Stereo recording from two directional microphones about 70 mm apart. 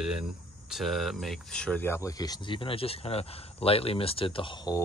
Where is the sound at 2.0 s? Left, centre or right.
Left.